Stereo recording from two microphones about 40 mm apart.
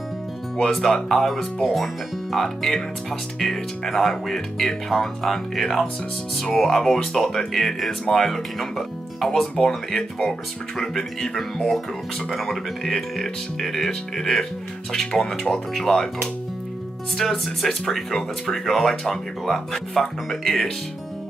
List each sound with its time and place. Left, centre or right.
0.7 s speech: centre
17.3 s speech: centre